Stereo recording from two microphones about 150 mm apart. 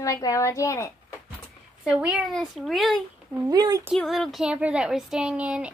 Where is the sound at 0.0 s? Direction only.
20° left (ahead or behind).